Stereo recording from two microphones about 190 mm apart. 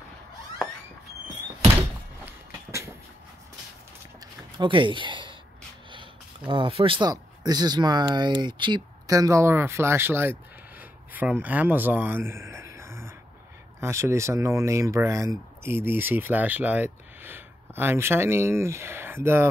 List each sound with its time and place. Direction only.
1.8 s thunk: 15° right (ahead or behind)
4.6 s speech: 25° right (ahead or behind)
10.8 s a sound: 10° right (ahead or behind)
13.7 s speech: 15° right (ahead or behind)